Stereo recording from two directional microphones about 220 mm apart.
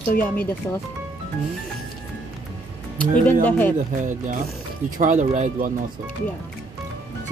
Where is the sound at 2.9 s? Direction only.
5° left (ahead or behind).